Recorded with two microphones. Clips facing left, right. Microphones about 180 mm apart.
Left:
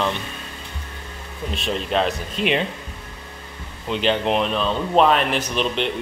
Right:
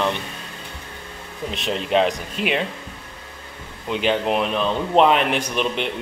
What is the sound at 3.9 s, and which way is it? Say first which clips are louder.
A man's voice: even; 10° right (ahead or behind).